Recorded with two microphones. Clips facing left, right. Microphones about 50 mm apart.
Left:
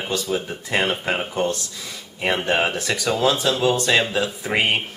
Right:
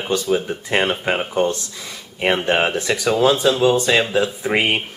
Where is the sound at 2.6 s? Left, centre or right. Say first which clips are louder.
Right 3 dB; centre.